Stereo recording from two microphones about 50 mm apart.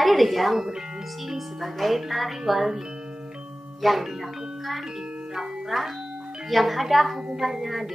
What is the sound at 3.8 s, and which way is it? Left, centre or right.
Speech, centre.